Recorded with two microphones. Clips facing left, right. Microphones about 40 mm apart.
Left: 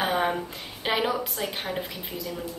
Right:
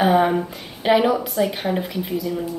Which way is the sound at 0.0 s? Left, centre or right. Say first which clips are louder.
Right 8 dB; centre.